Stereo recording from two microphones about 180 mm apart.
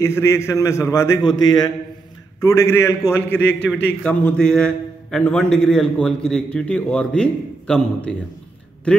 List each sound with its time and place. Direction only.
0.0 s a man's voice: 15° left (ahead or behind)